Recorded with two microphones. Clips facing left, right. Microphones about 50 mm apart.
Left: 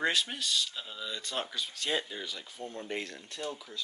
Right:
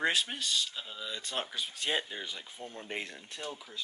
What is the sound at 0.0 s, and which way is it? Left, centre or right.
Speech, centre.